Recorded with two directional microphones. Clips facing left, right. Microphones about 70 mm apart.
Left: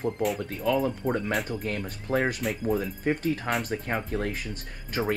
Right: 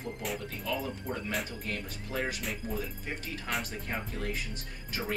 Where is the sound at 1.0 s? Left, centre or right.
Left.